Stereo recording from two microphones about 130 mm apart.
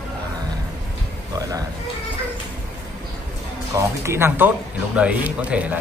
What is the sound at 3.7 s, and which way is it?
A man's voice, 20° right (ahead or behind).